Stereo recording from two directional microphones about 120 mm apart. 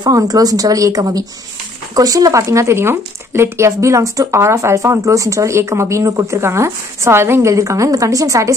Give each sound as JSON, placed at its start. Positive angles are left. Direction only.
{"t": 0.0, "sound": "speech", "side_deg": -30}